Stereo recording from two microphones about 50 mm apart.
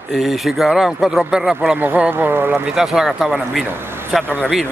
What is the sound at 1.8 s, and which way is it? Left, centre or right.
Speech, right.